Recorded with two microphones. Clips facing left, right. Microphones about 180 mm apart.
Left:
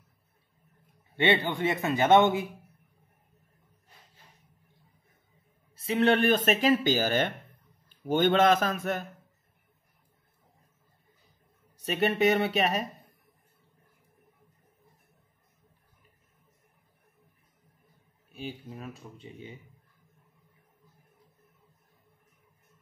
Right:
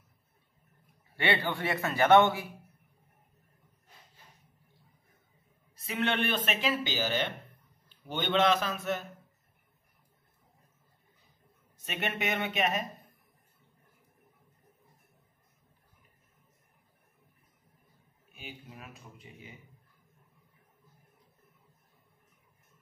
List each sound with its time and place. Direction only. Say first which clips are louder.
1.1 s a man's voice: left 4 dB; 20° left (ahead or behind)
5.8 s speech: left 7 dB; 35° left (ahead or behind)
11.7 s speech: left 8 dB; 35° left (ahead or behind)
18.3 s speech: left 8 dB; 35° left (ahead or behind)